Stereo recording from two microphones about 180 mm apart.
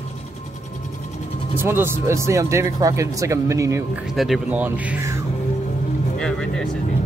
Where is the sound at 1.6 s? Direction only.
15° right (ahead or behind).